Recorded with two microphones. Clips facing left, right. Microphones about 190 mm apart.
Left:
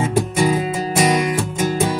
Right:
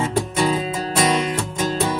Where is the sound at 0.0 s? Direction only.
10° left (ahead or behind).